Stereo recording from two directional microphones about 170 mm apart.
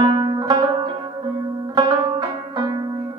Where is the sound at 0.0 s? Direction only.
25° right (ahead or behind).